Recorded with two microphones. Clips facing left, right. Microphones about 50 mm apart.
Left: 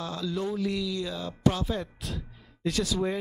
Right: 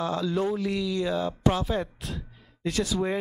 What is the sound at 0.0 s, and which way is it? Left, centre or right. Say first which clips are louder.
Speech: right 5 dB; centre.